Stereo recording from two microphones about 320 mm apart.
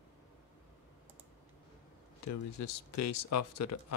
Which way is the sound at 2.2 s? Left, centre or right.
Left.